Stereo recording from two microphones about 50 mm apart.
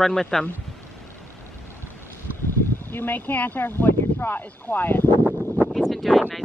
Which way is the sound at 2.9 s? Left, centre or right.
Left.